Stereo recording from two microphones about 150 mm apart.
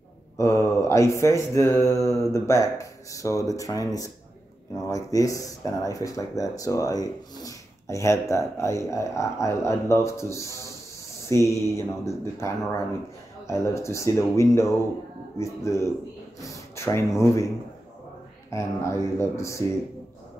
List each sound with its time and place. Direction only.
0.4 s speech: 20° left (ahead or behind)
16.3 s a sound: 20° left (ahead or behind)
18.5 s speech: 20° left (ahead or behind)